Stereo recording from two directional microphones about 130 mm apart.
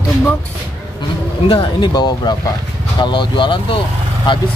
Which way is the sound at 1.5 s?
40° left (ahead or behind).